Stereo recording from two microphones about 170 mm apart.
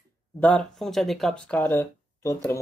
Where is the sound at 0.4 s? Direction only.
5° left (ahead or behind).